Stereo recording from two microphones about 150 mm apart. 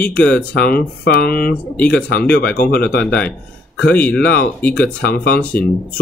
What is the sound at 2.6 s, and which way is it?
Speech, 90° left.